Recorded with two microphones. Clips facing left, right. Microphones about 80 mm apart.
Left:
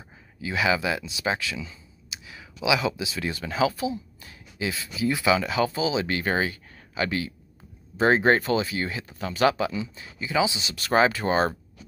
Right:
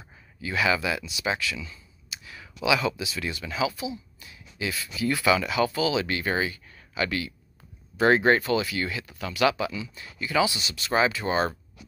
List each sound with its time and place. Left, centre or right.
0.4 s speech: left
5.0 s speech: left
5.4 s speech: left
5.8 s speech: left
6.0 s speech: left
10.1 s speech: left
10.8 s speech: left